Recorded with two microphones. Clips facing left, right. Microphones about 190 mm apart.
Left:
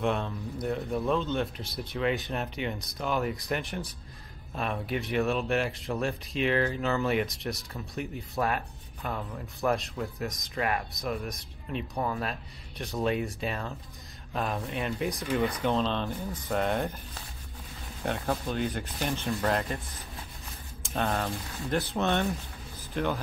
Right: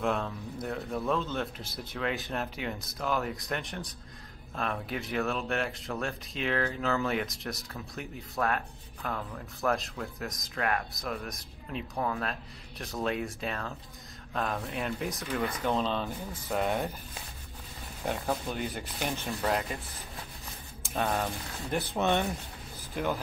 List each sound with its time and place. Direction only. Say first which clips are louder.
0.0 s speech: left 1 dB; centre (ahead or behind)
20.9 s speech: left 1 dB; 5° right (ahead or behind)